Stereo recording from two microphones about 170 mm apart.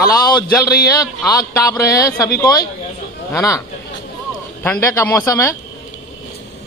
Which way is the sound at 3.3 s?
20° left (ahead or behind).